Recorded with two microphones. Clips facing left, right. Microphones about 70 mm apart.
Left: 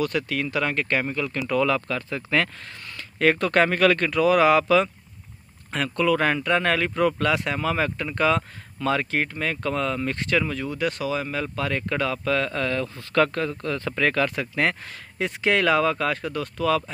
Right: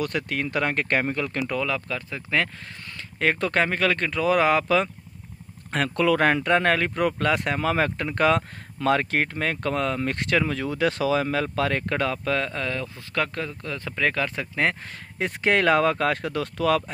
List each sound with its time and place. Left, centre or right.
0.0 s speech: right
1.6 s speech: centre; by 4.8 s right
5.7 s speech: right
6.1 s speech: right
10.5 s speech: right
12.4 s speech: centre; by 16.6 s right